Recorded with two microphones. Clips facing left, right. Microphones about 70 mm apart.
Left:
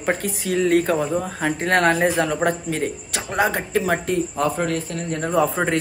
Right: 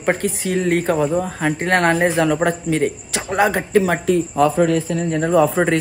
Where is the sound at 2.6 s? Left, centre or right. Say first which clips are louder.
Right 6 dB; right.